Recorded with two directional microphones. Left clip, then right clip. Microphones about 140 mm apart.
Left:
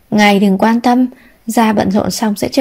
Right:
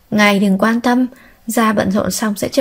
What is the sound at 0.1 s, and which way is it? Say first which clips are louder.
A woman's voice: left 3 dB; 20° left (ahead or behind).